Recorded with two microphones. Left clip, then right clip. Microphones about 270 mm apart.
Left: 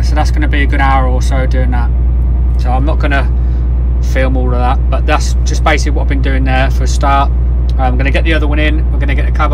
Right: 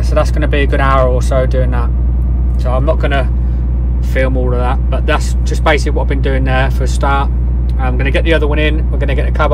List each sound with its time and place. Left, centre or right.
0.1 s speech: centre